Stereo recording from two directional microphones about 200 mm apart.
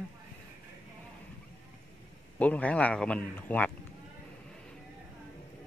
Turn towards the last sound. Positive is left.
turn(degrees=5)  # may be behind; listen again after turning